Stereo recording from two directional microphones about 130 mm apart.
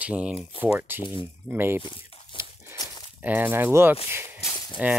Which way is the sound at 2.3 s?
40° left (ahead or behind).